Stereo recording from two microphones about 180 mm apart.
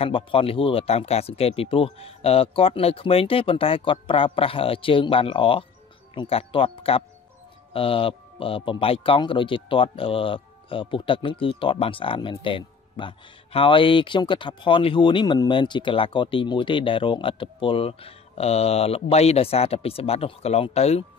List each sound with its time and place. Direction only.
0.0 s a man's voice: 30° left (ahead or behind)